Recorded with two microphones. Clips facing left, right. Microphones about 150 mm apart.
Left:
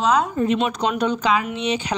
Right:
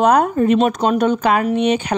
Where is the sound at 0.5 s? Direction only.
45° right (ahead or behind).